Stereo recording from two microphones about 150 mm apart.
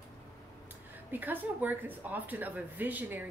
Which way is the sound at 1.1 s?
10° right (ahead or behind).